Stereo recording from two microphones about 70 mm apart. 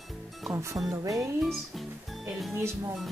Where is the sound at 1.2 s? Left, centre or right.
Centre.